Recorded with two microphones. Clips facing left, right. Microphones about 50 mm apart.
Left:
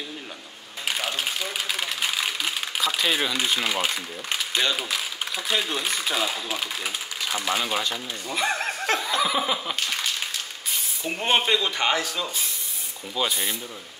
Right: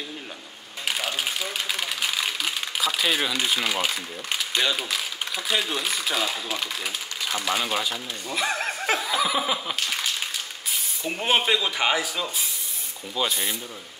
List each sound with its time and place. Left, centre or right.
0.8 s speech: centre